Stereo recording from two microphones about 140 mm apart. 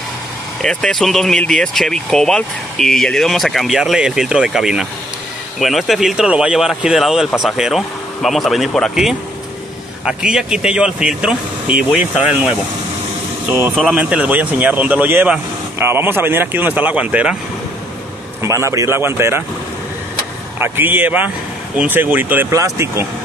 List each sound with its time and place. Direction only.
0.6 s speech: 5° left (ahead or behind)
18.4 s speech: 20° right (ahead or behind)
20.5 s speech: 15° right (ahead or behind)